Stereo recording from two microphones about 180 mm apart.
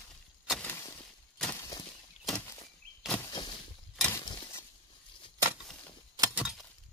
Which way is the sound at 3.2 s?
25° left (ahead or behind).